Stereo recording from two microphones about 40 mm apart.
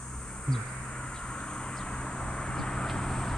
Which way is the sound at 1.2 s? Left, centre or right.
Left.